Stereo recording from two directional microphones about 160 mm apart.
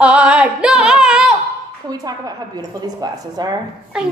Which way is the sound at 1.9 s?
25° right (ahead or behind).